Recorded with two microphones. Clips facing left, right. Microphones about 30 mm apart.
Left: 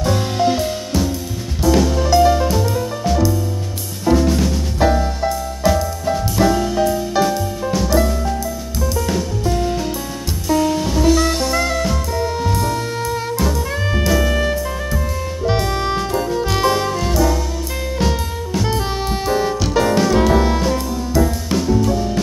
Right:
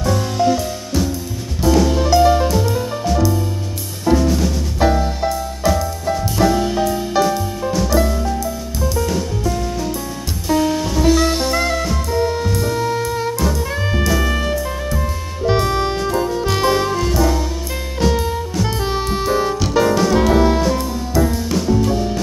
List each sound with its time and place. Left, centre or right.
0.0 s music: left
2.0 s music: centre
4.0 s music: centre
5.6 s music: centre
10.5 s music: centre